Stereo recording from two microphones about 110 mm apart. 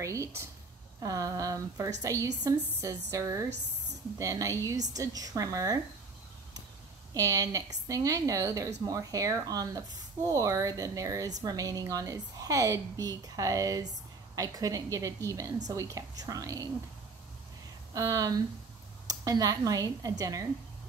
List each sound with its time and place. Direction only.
0.0 s a sound: 30° right (ahead or behind)
1.0 s a woman's voice: 35° right (ahead or behind)
7.2 s speech: 35° right (ahead or behind)
17.9 s speech: 35° right (ahead or behind)